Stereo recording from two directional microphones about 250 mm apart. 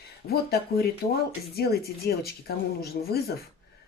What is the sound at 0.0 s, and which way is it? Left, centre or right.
Speech, left.